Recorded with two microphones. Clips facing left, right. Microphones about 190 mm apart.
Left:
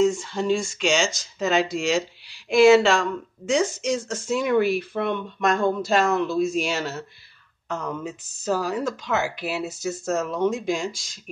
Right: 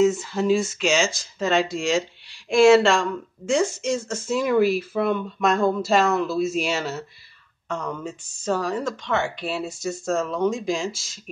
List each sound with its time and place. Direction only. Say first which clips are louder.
0.0 s speech: right 2 dB; centre (ahead or behind)